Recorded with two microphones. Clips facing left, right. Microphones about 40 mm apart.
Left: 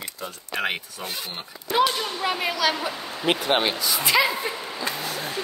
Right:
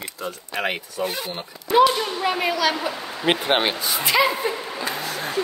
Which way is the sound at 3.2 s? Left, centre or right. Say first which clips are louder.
Right 2 dB; right.